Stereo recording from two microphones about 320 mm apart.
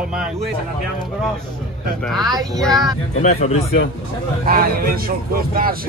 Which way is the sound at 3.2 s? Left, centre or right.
Left.